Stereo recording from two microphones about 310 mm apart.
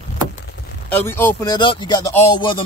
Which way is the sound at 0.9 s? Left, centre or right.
Centre.